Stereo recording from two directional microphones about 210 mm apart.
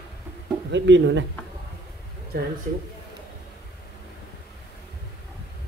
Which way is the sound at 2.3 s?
45° right (ahead or behind).